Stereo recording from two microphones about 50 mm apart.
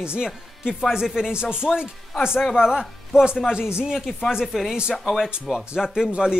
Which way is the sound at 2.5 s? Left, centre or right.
Centre.